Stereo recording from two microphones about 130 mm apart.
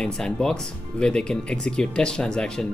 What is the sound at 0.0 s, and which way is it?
Speech, 5° left (ahead or behind).